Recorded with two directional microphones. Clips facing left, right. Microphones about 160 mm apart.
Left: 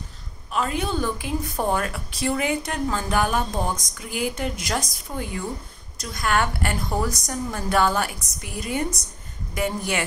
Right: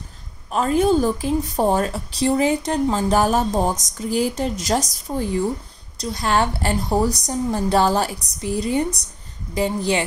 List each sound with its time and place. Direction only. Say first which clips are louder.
0.5 s a woman's voice: right 8 dB; 40° right (ahead or behind)